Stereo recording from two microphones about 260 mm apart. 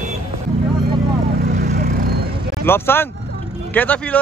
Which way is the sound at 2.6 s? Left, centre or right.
Centre.